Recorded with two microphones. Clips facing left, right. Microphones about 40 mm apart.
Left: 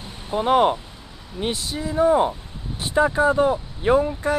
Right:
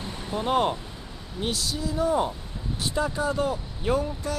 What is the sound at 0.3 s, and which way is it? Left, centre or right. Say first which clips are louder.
Speech: left 6 dB; left.